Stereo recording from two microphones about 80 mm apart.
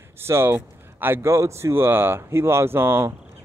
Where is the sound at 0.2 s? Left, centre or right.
Right.